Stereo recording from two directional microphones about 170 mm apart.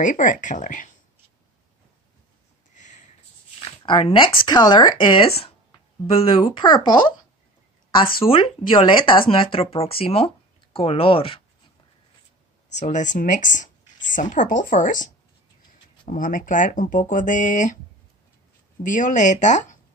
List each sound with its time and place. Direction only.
0.0 s speech: 50° left (ahead or behind)
2.7 s a sound: 45° left (ahead or behind)
3.5 s speech: 30° left (ahead or behind)
12.7 s speech: 45° left (ahead or behind)
16.1 s speech: 55° left (ahead or behind)
18.8 s speech: 50° left (ahead or behind)